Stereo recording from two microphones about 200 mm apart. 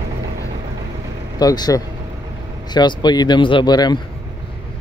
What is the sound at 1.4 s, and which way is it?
Speech, 20° left (ahead or behind).